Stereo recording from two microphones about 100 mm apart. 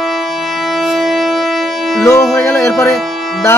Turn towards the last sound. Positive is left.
turn(degrees=0)  # may be behind; listen again after turning